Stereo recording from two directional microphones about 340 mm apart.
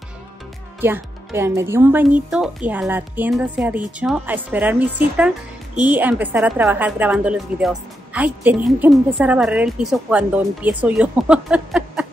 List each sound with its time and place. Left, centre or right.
0.7 s speech: centre